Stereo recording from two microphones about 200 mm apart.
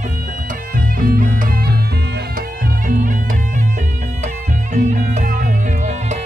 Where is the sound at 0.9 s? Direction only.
45° right (ahead or behind).